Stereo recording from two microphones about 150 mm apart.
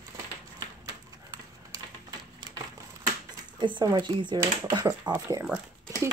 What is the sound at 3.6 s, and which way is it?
Speech, 30° right (ahead or behind).